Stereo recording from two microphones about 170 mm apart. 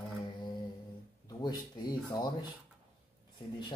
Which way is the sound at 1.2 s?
25° left (ahead or behind).